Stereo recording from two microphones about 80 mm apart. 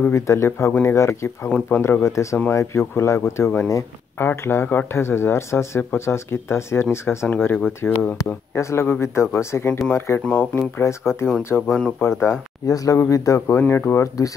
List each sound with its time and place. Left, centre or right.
0.0 s speech: left
10.2 s speech: centre
10.8 s speech: left
12.6 s speech: left
13.6 s speech: left